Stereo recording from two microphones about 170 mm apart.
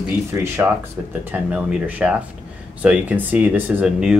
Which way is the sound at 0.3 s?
15° right (ahead or behind).